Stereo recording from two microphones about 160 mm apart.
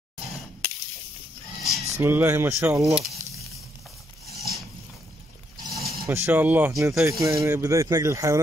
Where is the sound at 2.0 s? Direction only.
15° right (ahead or behind).